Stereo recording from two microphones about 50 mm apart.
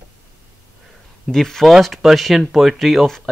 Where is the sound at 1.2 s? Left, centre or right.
Centre.